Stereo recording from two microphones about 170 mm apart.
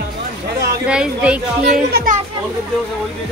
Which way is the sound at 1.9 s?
55° right (ahead or behind).